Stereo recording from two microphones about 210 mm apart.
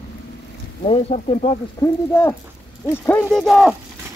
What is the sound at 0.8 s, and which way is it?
Speech, 30° left (ahead or behind).